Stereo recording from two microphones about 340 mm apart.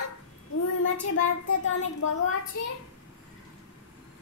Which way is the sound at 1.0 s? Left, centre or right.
Left.